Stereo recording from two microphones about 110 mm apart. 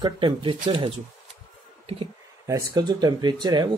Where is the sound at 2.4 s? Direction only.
30° right (ahead or behind).